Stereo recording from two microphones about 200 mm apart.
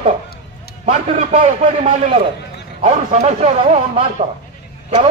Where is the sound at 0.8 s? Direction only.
35° right (ahead or behind).